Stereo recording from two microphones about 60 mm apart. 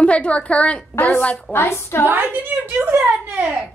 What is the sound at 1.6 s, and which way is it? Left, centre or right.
Speech, left.